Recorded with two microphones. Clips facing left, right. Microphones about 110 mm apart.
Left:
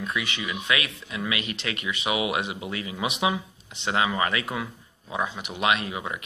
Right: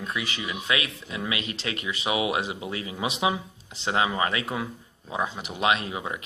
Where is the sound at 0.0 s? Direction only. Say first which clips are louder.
Left 1 dB; 35° right (ahead or behind).